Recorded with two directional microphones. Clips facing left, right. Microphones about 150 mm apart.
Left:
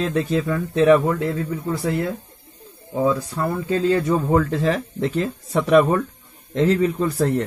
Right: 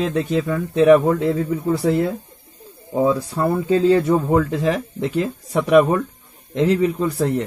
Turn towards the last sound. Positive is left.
turn(degrees=-10)  # may be behind; listen again after turning